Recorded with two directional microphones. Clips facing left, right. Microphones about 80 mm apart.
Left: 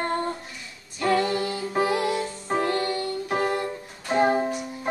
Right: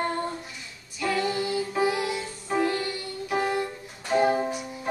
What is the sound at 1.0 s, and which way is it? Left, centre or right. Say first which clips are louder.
Music: left 4 dB; left.